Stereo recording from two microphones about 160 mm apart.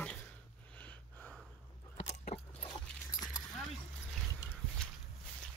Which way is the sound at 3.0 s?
20° left (ahead or behind).